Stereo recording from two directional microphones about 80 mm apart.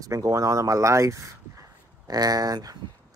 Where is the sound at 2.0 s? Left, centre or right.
Right.